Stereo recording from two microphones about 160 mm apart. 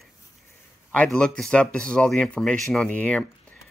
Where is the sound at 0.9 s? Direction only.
5° left (ahead or behind).